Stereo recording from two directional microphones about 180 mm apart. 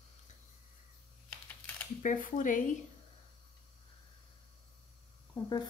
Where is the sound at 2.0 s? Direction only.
45° left (ahead or behind).